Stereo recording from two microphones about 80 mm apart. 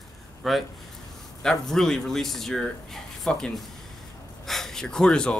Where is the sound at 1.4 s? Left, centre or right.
Centre.